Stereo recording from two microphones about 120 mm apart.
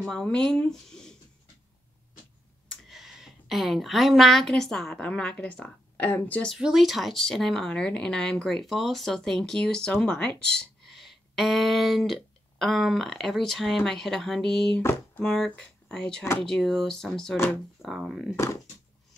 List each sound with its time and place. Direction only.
0.1 s speech: 5° left (ahead or behind)
2.7 s speech: centre (ahead or behind)
6.5 s speech: 5° right (ahead or behind)
14.8 s speech: 20° left (ahead or behind)
15.2 s speech: 5° left (ahead or behind)
18.3 s speech: 25° left (ahead or behind)